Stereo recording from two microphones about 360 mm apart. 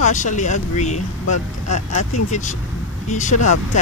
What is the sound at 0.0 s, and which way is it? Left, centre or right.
Speech, left.